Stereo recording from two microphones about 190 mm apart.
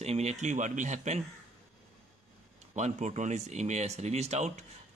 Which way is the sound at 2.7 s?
40° right (ahead or behind).